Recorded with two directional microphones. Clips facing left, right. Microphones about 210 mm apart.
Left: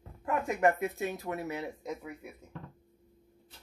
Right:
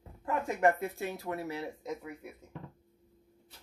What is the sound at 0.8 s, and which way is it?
Speech, 20° left (ahead or behind).